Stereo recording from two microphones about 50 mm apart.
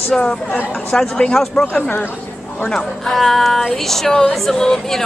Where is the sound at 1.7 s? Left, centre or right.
Left.